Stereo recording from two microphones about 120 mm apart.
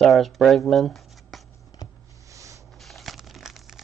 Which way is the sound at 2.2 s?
25° right (ahead or behind).